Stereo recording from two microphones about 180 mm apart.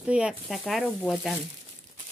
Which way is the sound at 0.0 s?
5° right (ahead or behind).